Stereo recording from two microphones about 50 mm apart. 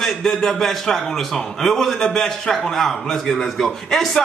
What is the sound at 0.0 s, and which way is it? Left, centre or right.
A man's voice, centre.